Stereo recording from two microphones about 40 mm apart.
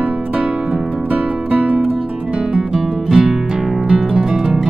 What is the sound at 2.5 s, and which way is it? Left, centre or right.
Music, centre.